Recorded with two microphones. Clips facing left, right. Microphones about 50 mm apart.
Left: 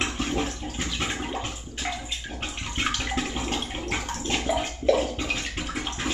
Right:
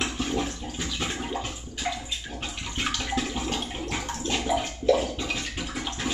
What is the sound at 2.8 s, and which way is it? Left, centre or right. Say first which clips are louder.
Bathtub: left 1 dB; centre.